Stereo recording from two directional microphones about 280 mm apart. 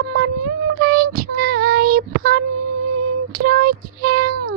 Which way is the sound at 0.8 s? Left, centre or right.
Right.